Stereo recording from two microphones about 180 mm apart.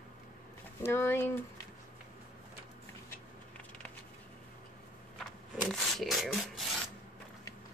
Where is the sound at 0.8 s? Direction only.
15° left (ahead or behind).